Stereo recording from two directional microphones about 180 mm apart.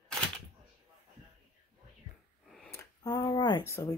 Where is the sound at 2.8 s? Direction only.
20° left (ahead or behind).